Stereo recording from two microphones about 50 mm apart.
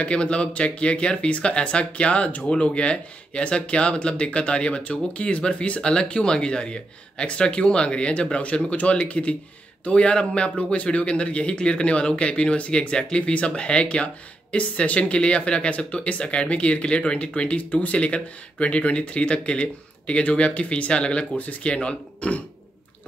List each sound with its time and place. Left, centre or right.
0.0 s speech: left